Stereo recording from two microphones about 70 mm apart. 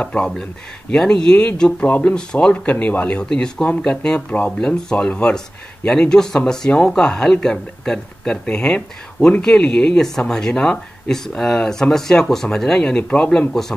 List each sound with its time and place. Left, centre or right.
0.0 s speech: centre